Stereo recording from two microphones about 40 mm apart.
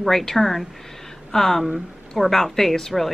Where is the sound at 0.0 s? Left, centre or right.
Centre.